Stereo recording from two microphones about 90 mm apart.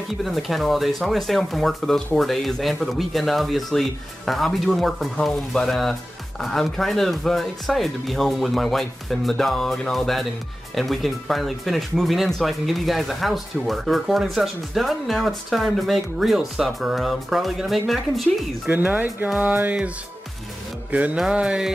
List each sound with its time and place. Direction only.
0.2 s speech: centre (ahead or behind)
18.7 s speech: 20° right (ahead or behind)
20.9 s speech: 15° right (ahead or behind)